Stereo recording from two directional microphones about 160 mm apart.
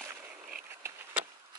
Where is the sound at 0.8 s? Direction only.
15° right (ahead or behind).